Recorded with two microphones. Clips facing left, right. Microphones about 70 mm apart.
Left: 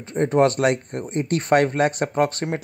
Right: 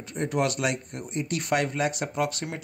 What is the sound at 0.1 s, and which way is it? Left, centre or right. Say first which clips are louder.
Speech: left 9 dB; left.